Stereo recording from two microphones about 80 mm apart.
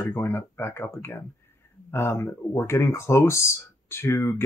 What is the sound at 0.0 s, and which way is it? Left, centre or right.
Speech, left.